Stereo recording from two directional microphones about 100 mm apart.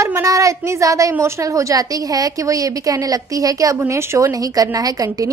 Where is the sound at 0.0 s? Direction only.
30° right (ahead or behind).